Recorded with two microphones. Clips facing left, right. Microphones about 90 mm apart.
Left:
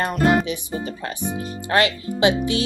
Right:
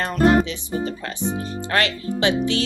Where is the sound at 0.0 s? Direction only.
15° left (ahead or behind).